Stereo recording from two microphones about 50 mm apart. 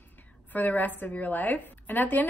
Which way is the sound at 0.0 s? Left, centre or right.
Left.